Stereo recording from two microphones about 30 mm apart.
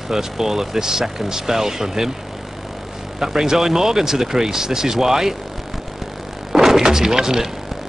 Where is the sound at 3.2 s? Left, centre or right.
Centre.